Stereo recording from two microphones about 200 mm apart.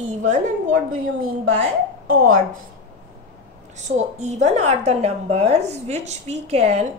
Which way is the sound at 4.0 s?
35° right (ahead or behind).